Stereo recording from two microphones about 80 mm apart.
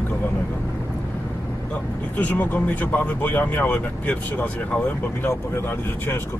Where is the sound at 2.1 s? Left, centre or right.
Left.